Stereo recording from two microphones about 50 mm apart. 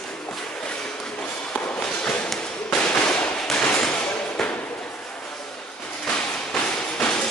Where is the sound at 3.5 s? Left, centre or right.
Centre.